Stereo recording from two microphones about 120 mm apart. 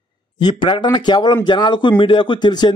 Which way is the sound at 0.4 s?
40° left (ahead or behind).